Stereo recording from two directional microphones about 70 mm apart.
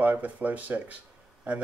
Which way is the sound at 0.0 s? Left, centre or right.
Right.